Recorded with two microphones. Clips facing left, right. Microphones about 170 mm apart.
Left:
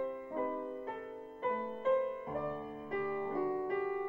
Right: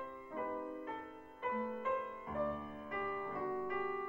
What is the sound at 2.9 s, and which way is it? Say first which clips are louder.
Music: left 7 dB; 30° left (ahead or behind).